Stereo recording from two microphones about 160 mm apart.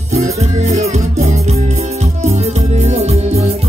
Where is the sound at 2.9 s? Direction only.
40° right (ahead or behind).